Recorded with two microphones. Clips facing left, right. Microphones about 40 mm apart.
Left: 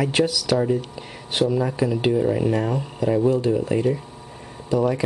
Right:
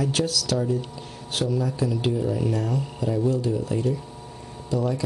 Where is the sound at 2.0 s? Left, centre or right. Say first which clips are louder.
Left 7 dB; left.